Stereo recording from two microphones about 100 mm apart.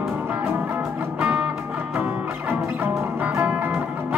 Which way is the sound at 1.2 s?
10° right (ahead or behind).